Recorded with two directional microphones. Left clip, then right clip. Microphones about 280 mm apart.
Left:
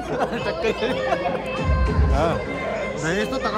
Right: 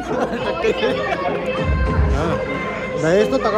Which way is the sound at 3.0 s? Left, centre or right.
Centre.